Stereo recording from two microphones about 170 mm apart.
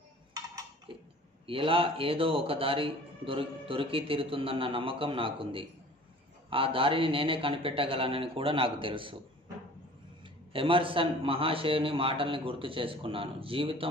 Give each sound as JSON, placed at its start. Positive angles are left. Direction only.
{"t": 0.9, "sound": "a sound", "side_deg": -30}
{"t": 1.4, "sound": "a man's voice", "side_deg": -30}
{"t": 10.5, "sound": "a man's voice", "side_deg": -30}